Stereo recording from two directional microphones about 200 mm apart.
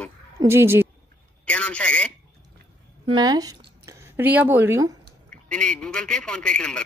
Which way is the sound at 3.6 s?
55° right (ahead or behind).